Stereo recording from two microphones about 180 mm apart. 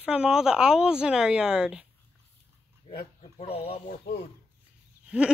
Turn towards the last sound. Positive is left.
turn(degrees=-5)  # may be behind; listen again after turning